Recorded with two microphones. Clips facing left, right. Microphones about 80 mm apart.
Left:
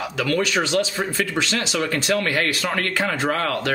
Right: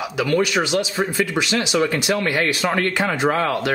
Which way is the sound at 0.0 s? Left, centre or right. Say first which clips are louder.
Right 3 dB; centre.